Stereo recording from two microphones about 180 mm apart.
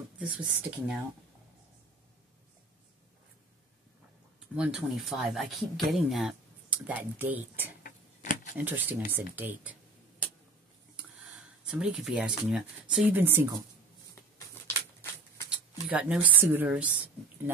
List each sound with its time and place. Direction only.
0.3 s speech: 10° right (ahead or behind)
4.6 s speech: 5° right (ahead or behind)
7.8 s a sound: 45° left (ahead or behind)
8.5 s speech: 10° right (ahead or behind)
11.7 s speech: 5° right (ahead or behind)
15.5 s speech: 5° right (ahead or behind)